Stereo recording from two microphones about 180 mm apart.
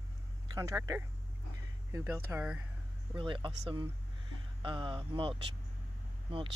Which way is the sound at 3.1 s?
25° right (ahead or behind).